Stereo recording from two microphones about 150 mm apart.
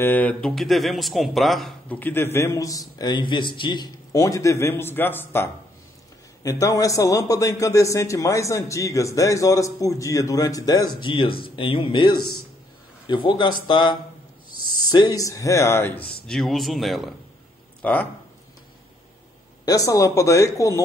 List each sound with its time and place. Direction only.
0.0 s speech: 10° left (ahead or behind)
1.9 s a man's voice: 10° left (ahead or behind); by 13.9 s 35° left (ahead or behind)
15.0 s a man's voice: 25° left (ahead or behind)
16.3 s speech: centre (ahead or behind)
17.8 s a man's voice: 10° left (ahead or behind)
19.6 s a man's voice: 25° left (ahead or behind)